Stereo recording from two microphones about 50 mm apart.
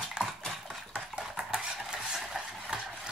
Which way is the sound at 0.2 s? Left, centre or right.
Centre.